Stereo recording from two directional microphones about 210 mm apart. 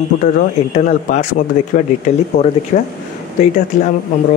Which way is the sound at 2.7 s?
35° left (ahead or behind).